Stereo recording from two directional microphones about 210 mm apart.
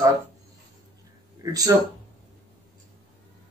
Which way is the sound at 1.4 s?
15° right (ahead or behind).